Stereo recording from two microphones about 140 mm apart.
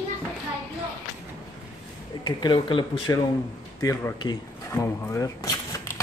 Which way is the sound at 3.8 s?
20° left (ahead or behind).